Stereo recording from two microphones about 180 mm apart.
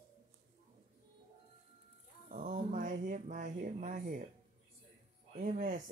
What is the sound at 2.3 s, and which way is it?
Speech, 40° right (ahead or behind).